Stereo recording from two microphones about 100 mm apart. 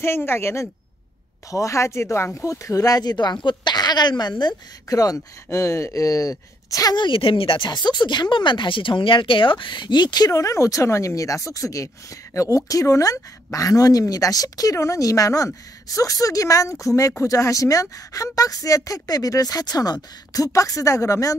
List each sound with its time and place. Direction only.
0.0 s speech: 25° left (ahead or behind); by 4.6 s 45° left (ahead or behind)
4.8 s speech: 35° left (ahead or behind)
7.0 s speech: 60° left (ahead or behind); by 21.4 s 30° left (ahead or behind)